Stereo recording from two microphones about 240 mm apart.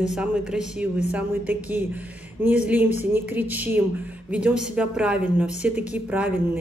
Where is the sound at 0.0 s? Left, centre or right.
Centre.